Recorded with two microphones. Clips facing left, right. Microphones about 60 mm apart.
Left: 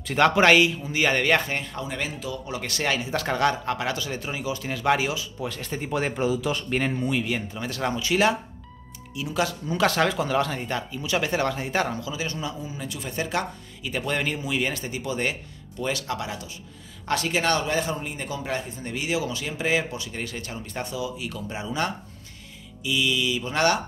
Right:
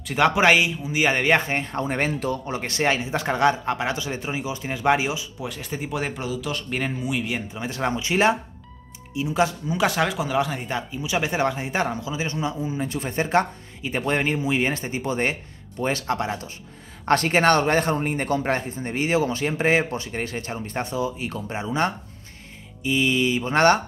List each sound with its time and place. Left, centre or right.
0.0 s speech: centre; by 2.4 s right
2.4 s speech: right; by 5.9 s centre
5.9 s speech: centre; by 9.6 s right
9.7 s a man's voice: centre; by 23.8 s right